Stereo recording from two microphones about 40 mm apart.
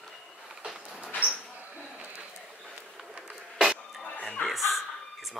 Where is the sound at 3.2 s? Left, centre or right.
Centre.